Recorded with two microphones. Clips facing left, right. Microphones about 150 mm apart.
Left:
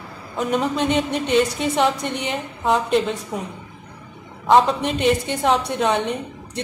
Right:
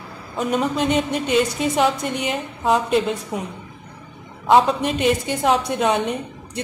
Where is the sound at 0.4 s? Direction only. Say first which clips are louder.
Even; centre (ahead or behind).